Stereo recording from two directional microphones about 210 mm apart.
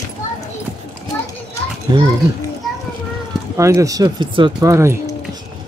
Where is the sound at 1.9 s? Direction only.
20° right (ahead or behind).